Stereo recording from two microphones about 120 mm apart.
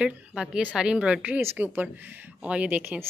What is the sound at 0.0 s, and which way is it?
Speech, 5° right (ahead or behind).